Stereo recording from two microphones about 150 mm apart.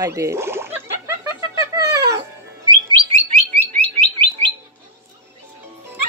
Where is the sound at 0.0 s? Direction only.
20° right (ahead or behind).